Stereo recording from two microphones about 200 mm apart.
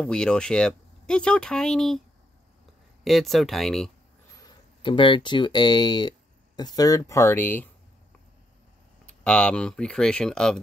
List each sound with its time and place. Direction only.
0.0 s speech: 5° left (ahead or behind)
3.0 s speech: centre (ahead or behind)
4.4 s speech: 25° left (ahead or behind)
9.2 s speech: 5° left (ahead or behind)